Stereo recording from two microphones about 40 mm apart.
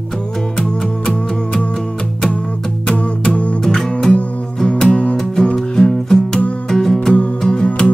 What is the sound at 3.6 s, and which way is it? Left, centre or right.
Music, centre.